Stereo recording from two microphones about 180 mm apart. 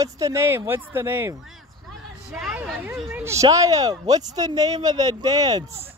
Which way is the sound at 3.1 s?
15° right (ahead or behind).